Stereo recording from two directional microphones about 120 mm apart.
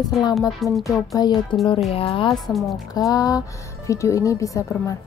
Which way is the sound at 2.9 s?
30° left (ahead or behind).